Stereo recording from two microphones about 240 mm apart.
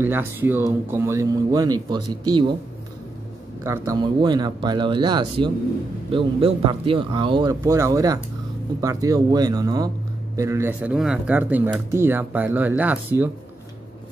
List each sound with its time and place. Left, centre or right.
0.0 s speech: centre
3.6 s speech: centre